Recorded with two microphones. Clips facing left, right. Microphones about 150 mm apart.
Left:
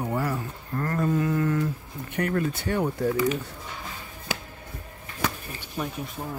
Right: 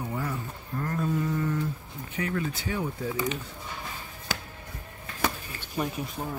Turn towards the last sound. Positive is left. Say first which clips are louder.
# right 1 dB
turn(degrees=-5)  # may be behind; listen again after turning